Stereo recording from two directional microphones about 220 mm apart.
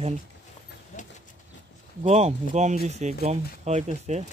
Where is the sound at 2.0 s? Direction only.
30° right (ahead or behind).